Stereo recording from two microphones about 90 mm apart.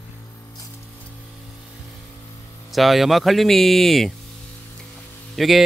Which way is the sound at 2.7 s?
Centre (ahead or behind).